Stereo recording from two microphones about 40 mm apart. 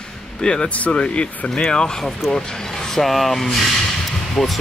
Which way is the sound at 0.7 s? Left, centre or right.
Left.